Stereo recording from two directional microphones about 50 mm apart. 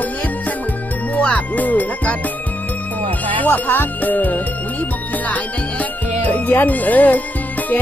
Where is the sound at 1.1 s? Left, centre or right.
Left.